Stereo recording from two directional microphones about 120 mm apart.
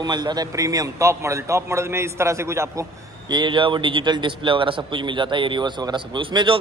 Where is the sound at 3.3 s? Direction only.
40° right (ahead or behind).